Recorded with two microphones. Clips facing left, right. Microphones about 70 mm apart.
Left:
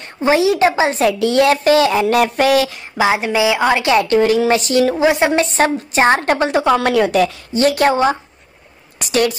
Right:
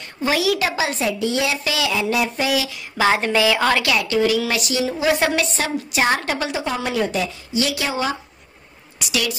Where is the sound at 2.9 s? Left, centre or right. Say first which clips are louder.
Left 2 dB; centre.